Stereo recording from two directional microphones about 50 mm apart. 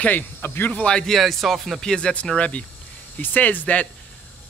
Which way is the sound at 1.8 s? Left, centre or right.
Centre.